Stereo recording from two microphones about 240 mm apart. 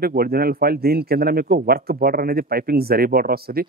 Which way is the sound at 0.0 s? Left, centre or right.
Right.